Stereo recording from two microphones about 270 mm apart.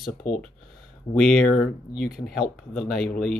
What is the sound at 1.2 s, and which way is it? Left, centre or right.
Speech, centre.